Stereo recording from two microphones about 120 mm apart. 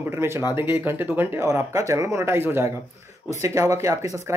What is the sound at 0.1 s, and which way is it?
Speech, 20° right (ahead or behind).